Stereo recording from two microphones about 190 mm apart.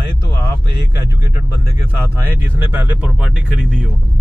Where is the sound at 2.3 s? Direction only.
10° right (ahead or behind).